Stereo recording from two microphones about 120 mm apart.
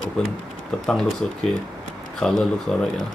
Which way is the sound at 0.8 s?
5° left (ahead or behind).